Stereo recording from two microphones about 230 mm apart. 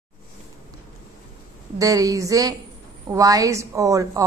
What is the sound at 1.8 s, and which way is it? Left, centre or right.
A woman's voice, centre.